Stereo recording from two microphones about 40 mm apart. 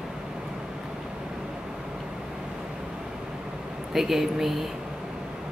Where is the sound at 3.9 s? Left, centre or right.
Centre.